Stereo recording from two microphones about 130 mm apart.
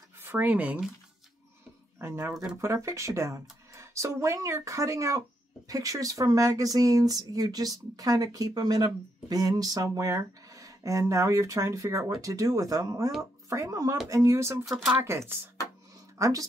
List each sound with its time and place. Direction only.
0.2 s speech: 15° right (ahead or behind)
2.0 s speech: 20° right (ahead or behind)